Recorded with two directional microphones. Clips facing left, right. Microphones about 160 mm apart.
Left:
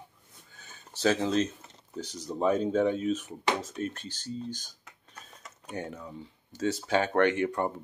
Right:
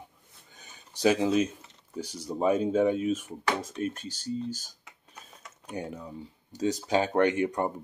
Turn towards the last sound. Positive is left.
turn(degrees=-15)  # may be behind; listen again after turning